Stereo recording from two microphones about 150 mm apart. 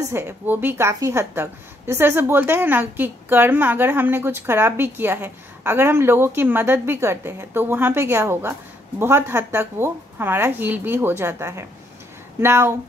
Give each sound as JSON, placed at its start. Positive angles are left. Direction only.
{"t": 0.1, "sound": "a woman's voice", "side_deg": -15}